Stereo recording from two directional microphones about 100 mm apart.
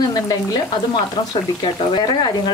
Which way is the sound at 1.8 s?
50° left (ahead or behind).